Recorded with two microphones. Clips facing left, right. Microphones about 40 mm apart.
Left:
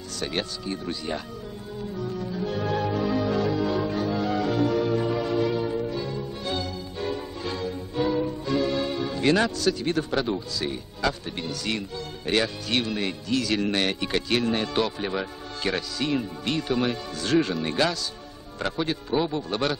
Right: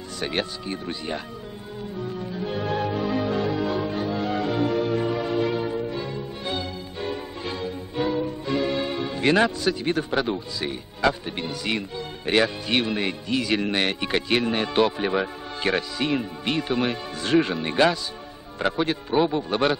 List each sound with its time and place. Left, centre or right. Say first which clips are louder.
0.2 s speech: right 2 dB; right
2.0 s music: even; right
12.3 s speech: right 3 dB; right